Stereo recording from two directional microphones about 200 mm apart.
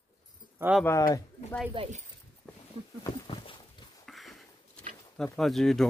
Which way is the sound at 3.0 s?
20° left (ahead or behind).